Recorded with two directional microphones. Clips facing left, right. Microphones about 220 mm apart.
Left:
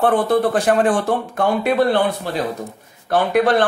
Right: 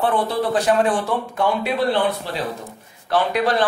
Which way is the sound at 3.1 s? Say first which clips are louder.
Left 4 dB; 50° left (ahead or behind).